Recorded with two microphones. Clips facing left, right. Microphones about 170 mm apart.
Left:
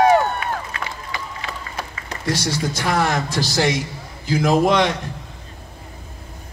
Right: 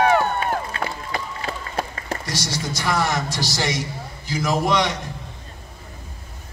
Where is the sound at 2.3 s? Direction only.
55° left (ahead or behind).